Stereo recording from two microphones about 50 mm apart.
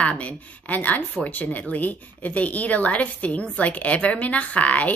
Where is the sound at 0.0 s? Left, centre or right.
Left.